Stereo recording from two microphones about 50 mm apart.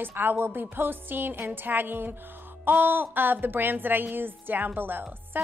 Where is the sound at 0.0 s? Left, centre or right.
Right.